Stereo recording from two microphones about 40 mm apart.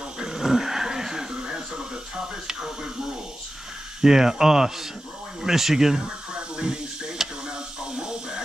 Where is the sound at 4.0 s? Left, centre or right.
Centre.